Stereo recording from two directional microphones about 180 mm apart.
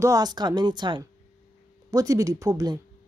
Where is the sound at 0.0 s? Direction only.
20° right (ahead or behind).